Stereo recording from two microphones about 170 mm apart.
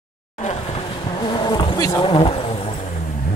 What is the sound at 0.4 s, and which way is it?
Bee, 35° left (ahead or behind).